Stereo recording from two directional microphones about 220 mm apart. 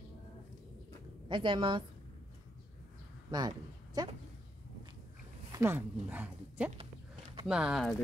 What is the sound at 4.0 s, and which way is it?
Speech, 15° right (ahead or behind).